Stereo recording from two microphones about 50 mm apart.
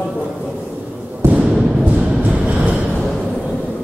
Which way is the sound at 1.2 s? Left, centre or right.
Right.